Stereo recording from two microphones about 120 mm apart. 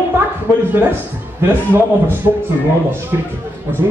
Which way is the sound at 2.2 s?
25° right (ahead or behind).